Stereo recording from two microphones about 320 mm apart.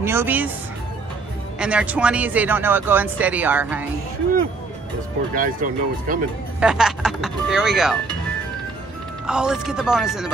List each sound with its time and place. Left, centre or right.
0.0 s speech: centre
1.6 s speech: centre
5.3 s speech: right
6.6 s speech: centre
9.2 s speech: centre